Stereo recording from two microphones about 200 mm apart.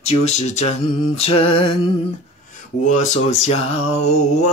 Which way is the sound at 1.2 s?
30° left (ahead or behind).